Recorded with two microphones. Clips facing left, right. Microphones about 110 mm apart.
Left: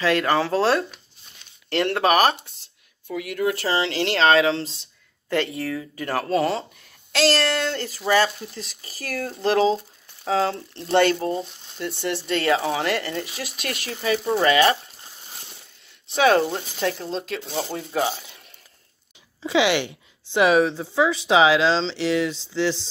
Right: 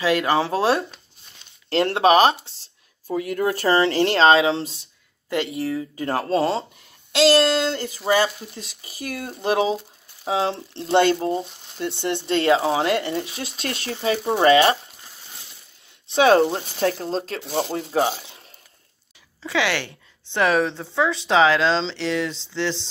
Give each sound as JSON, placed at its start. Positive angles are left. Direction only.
{"t": 0.0, "sound": "speech", "side_deg": -15}
{"t": 1.7, "sound": "speech", "side_deg": -30}
{"t": 2.6, "sound": "speech", "side_deg": -35}
{"t": 4.2, "sound": "speech", "side_deg": -30}
{"t": 16.1, "sound": "speech", "side_deg": -30}
{"t": 19.4, "sound": "speech", "side_deg": 20}